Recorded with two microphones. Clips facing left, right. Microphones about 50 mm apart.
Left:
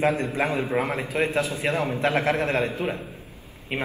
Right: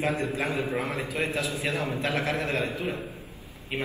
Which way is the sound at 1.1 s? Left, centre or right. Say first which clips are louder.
Left 5 dB; left.